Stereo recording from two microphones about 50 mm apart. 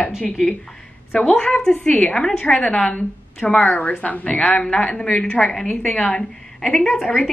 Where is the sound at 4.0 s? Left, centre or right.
Left.